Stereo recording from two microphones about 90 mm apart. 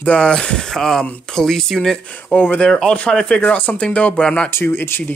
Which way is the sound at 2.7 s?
5° left (ahead or behind).